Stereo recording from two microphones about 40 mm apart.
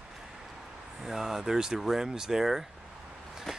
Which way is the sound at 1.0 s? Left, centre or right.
Centre.